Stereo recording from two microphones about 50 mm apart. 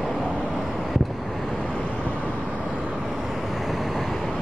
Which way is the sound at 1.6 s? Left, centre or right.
Left.